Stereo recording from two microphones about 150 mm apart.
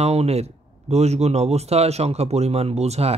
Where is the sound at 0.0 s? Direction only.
45° right (ahead or behind).